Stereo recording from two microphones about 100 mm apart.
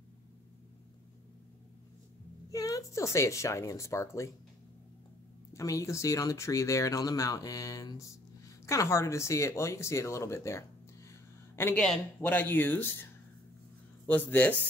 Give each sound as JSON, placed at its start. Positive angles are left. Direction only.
{"t": 2.5, "sound": "speech", "side_deg": 35}
{"t": 5.5, "sound": "speech", "side_deg": 35}
{"t": 11.1, "sound": "a sound", "side_deg": 25}
{"t": 11.7, "sound": "a man's voice", "side_deg": 5}
{"t": 12.2, "sound": "speech", "side_deg": 20}
{"t": 14.0, "sound": "speech", "side_deg": 20}